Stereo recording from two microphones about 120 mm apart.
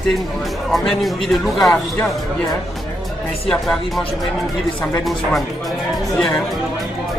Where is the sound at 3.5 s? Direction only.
5° left (ahead or behind).